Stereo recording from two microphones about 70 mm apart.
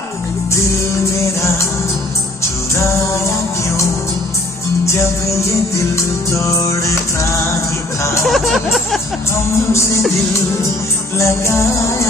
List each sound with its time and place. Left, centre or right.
4.8 s music: left
8.3 s speech: centre
11.1 s music: left